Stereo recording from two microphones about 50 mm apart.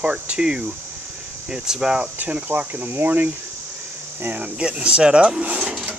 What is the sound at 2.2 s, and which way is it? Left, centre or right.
Cricket, right.